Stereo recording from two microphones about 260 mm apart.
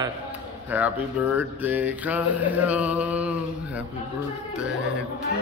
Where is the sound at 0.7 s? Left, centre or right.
Centre.